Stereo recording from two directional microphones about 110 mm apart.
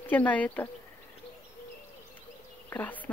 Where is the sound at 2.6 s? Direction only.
15° left (ahead or behind).